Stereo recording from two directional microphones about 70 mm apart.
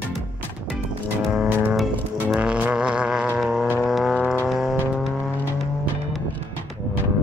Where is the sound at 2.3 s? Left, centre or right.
Centre.